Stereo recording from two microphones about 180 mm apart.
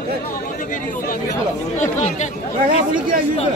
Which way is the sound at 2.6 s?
50° right (ahead or behind).